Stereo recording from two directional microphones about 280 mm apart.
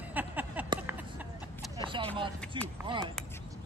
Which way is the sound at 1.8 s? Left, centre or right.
Centre.